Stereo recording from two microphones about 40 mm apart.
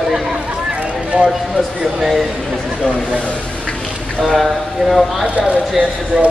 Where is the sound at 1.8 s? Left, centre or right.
Centre.